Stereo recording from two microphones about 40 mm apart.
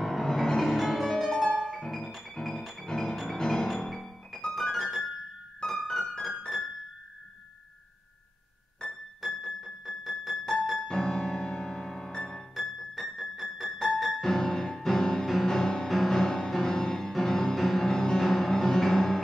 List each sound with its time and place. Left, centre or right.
0.0 s music: centre
2.6 s music: centre
2.9 s music: centre
5.6 s piano: centre
6.2 s piano: centre
8.8 s piano: left
9.2 s piano: centre
12.5 s music: centre